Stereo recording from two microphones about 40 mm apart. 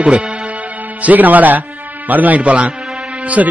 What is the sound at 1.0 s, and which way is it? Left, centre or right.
Speech, right.